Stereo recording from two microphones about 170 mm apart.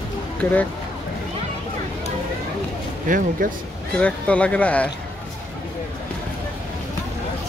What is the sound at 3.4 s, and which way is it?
Speech, 50° right (ahead or behind).